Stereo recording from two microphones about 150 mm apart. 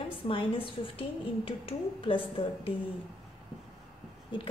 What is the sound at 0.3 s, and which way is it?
A woman's voice, 35° left (ahead or behind).